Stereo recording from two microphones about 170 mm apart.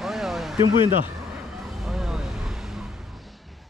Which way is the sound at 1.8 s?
5° right (ahead or behind).